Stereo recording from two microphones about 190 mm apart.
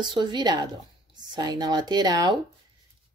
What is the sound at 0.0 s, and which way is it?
Speech, 25° right (ahead or behind).